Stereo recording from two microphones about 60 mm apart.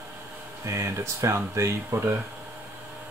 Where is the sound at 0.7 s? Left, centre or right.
Right.